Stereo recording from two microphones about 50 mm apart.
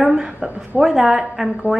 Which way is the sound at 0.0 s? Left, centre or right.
Centre.